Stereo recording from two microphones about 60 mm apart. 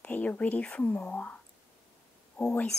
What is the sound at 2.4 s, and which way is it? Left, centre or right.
Speech, left.